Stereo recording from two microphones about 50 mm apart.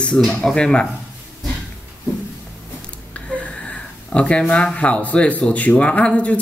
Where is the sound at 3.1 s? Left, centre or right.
Left.